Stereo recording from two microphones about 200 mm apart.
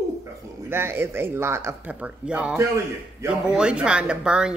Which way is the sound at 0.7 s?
10° right (ahead or behind).